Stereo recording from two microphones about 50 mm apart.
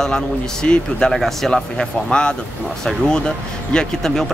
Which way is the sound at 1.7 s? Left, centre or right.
Centre.